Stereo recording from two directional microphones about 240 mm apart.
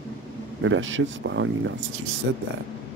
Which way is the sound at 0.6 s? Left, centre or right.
Right.